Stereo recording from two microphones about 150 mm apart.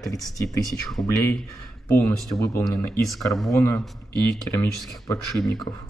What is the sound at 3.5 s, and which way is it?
Speech, 15° left (ahead or behind).